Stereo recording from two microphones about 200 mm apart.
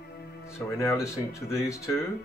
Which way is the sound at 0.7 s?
15° left (ahead or behind).